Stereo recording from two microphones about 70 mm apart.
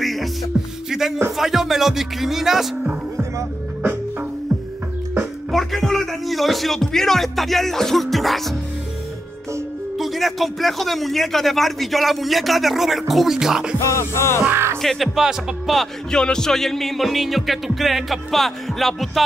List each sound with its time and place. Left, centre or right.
0.0 s music: centre
3.8 s music: right
5.5 s music: centre
9.9 s music: centre
13.7 s music: left
14.5 s music: right
14.8 s music: centre